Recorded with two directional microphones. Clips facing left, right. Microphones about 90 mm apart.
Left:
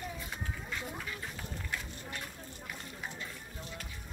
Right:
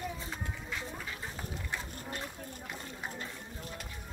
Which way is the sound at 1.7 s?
30° right (ahead or behind).